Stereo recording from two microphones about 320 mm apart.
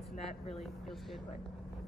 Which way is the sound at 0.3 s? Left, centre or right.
Centre.